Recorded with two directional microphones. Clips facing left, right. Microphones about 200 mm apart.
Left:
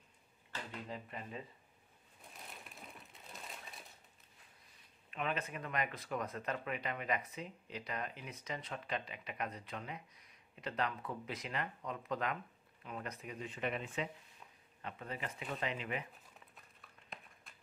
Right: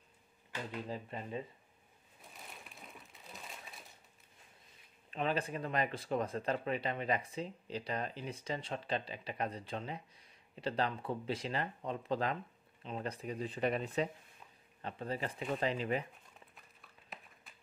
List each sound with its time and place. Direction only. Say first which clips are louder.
0.8 s speech: right 4 dB; 30° right (ahead or behind)
2.3 s sewing machine: even; centre (ahead or behind)
5.1 s speech: right 4 dB; 30° right (ahead or behind)